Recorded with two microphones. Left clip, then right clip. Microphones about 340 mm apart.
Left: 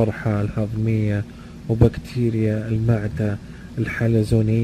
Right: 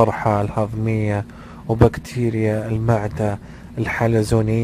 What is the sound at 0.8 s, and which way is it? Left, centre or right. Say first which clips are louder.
Speech: right 2 dB; right.